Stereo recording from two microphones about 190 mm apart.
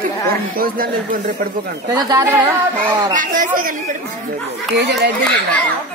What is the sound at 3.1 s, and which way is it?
Speech, 45° right (ahead or behind).